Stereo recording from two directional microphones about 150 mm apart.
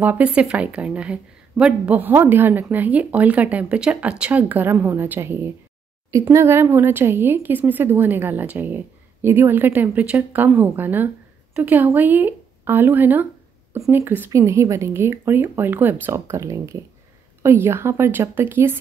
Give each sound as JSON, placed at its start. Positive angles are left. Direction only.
{"t": 0.0, "sound": "a woman's voice", "side_deg": -10}